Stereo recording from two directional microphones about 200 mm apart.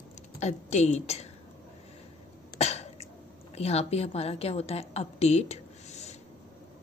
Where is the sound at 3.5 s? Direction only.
30° left (ahead or behind).